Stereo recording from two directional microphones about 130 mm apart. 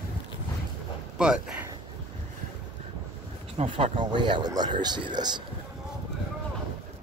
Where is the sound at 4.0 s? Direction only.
35° right (ahead or behind).